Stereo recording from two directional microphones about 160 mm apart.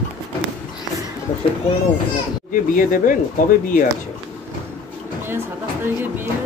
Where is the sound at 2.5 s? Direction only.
55° left (ahead or behind).